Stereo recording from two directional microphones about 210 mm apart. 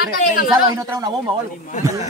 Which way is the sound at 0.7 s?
15° right (ahead or behind).